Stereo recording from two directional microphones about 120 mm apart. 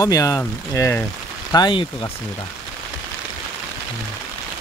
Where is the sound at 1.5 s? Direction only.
40° left (ahead or behind).